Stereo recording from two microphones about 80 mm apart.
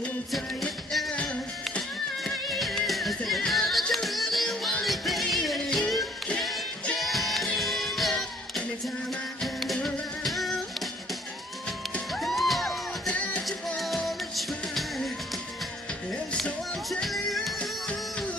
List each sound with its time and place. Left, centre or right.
0.3 s music: centre
1.1 s music: centre
2.2 s music: centre
12.1 s music: centre
13.1 s music: centre
13.7 s music: centre
16.4 s music: centre
17.6 s music: centre